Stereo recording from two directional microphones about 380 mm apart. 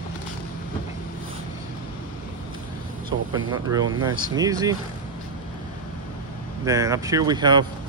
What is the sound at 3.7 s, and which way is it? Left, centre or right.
Speech, centre.